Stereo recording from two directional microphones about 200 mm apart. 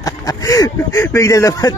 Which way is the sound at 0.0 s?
15° left (ahead or behind).